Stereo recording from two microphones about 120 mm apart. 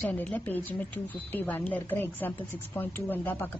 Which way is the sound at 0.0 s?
10° left (ahead or behind).